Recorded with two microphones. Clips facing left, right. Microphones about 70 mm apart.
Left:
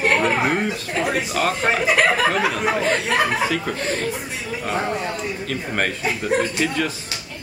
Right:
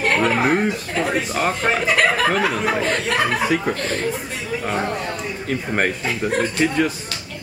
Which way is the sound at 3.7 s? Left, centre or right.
Right.